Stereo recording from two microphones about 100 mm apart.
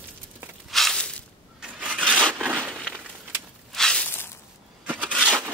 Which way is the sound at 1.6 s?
10° right (ahead or behind).